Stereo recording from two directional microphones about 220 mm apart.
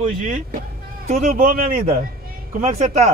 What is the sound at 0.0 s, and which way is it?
Speech, 35° right (ahead or behind).